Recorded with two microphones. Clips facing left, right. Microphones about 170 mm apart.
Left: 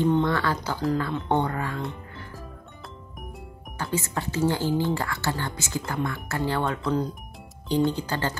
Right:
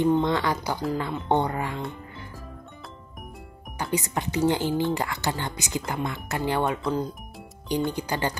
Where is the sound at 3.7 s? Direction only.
15° right (ahead or behind).